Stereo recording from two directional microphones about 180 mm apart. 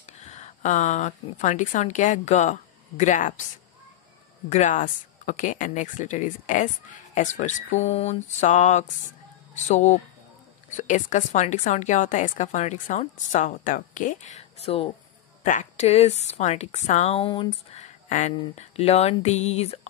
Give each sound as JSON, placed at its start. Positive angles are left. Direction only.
{"t": 0.2, "sound": "a woman's voice", "side_deg": 40}
{"t": 4.5, "sound": "a woman's voice", "side_deg": 40}